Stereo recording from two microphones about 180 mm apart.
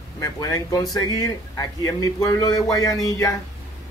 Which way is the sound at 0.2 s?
20° left (ahead or behind).